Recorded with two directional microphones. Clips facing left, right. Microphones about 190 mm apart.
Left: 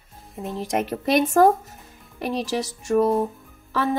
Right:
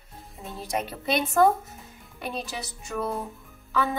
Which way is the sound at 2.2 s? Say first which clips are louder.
Left 8 dB; 85° left.